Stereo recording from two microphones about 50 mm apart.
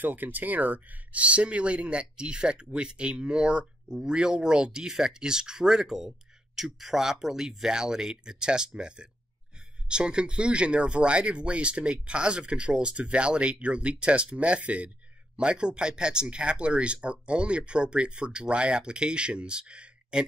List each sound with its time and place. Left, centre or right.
0.0 s speech: right; by 20.2 s centre